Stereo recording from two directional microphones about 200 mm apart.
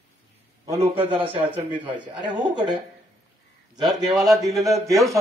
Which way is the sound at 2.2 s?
20° right (ahead or behind).